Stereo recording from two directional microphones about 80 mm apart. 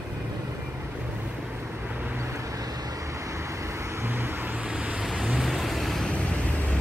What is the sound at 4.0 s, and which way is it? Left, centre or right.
Vehicle, right.